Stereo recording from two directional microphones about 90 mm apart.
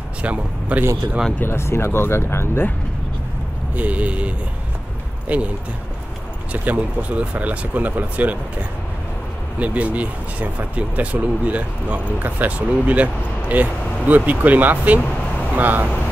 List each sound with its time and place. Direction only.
0.2 s speech: 15° right (ahead or behind)
1.4 s speech: 25° left (ahead or behind)
3.7 s speech: 15° right (ahead or behind)
5.3 s speech: 15° right (ahead or behind)
6.5 s speech: 15° right (ahead or behind)
9.6 s speech: 15° right (ahead or behind)